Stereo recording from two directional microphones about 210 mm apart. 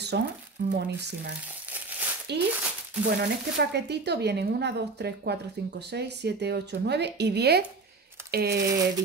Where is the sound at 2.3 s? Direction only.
55° right (ahead or behind).